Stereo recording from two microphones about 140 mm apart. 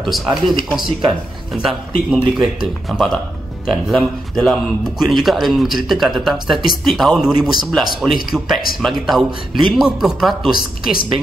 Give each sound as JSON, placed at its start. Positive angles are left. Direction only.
{"t": 0.0, "sound": "speech", "side_deg": 0}
{"t": 10.8, "sound": "a woman's voice", "side_deg": 90}